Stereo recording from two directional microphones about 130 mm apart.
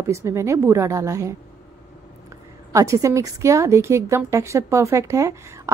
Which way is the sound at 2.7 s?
25° right (ahead or behind).